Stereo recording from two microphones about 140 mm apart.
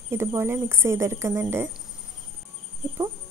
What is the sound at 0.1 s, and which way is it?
Speech, 15° right (ahead or behind).